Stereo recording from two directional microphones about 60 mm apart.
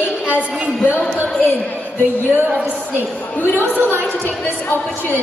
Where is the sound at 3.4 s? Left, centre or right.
Left.